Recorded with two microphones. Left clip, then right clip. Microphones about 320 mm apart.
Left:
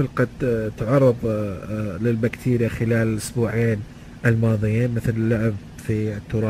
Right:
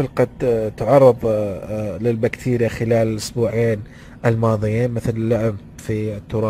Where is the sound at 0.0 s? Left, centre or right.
Centre.